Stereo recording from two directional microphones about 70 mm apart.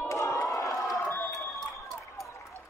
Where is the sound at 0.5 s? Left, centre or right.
Left.